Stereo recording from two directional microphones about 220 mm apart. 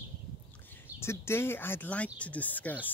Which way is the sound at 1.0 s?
10° left (ahead or behind).